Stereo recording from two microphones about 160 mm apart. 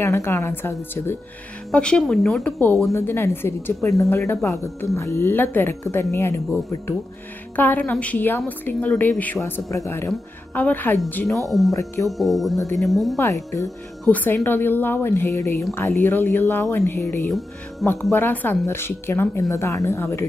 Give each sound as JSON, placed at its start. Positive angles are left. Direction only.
{"t": 0.0, "sound": "speech", "side_deg": 20}
{"t": 11.4, "sound": "speech", "side_deg": 0}
{"t": 11.7, "sound": "speech", "side_deg": 20}
{"t": 12.1, "sound": "speech", "side_deg": 0}
{"t": 13.2, "sound": "speech", "side_deg": 20}
{"t": 17.8, "sound": "speech", "side_deg": 0}
{"t": 18.1, "sound": "speech", "side_deg": 10}